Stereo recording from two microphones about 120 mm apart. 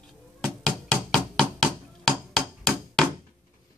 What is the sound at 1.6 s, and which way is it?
Chop, 5° left (ahead or behind).